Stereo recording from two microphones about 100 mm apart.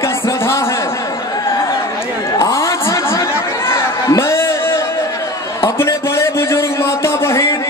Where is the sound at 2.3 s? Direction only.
30° left (ahead or behind).